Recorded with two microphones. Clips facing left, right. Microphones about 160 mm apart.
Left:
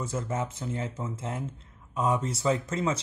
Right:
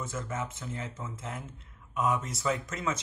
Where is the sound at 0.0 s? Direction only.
35° left (ahead or behind).